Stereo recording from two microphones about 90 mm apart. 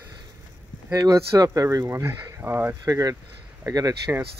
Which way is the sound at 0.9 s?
40° right (ahead or behind).